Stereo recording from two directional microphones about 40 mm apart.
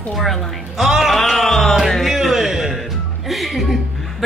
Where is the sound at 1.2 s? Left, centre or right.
Centre.